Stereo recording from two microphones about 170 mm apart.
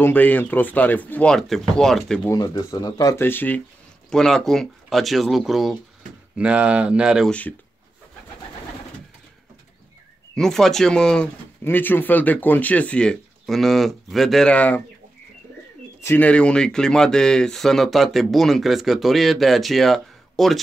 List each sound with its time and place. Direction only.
0.0 s speech: 10° left (ahead or behind)
2.3 s speech: 20° left (ahead or behind); by 7.3 s 5° right (ahead or behind)
10.3 s speech: centre (ahead or behind)
16.0 s speech: 10° left (ahead or behind)